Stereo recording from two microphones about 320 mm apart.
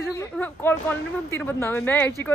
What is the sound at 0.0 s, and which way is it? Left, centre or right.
A woman's voice, centre.